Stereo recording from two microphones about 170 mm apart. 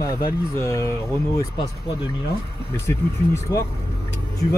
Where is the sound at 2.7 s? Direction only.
15° left (ahead or behind).